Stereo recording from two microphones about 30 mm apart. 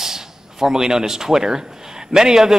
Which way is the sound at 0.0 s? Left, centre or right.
Centre.